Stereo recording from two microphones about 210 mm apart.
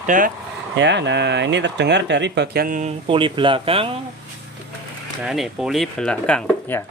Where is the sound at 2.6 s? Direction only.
35° right (ahead or behind).